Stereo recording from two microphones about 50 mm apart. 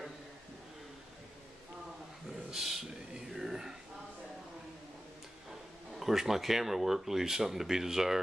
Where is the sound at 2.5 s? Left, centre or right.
Centre.